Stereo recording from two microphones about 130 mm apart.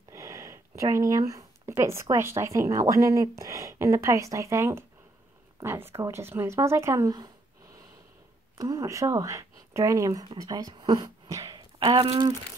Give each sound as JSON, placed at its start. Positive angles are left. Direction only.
{"t": 0.1, "sound": "speech", "side_deg": -25}
{"t": 8.5, "sound": "speech", "side_deg": -30}